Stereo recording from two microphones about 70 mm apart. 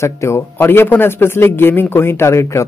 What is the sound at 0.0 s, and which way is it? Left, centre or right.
A man's voice, left.